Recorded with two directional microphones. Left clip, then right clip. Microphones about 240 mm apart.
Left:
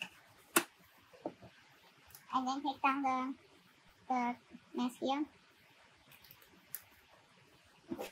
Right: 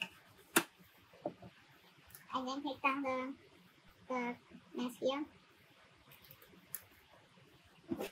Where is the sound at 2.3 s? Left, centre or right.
Left.